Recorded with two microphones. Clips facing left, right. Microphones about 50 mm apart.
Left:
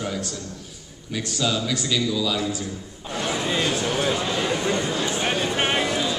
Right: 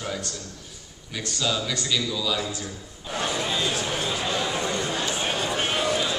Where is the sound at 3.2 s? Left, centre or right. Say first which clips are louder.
Left 3 dB; left.